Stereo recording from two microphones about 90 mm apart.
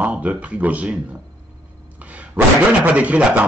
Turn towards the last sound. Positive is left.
turn(degrees=-15)  # may be behind; listen again after turning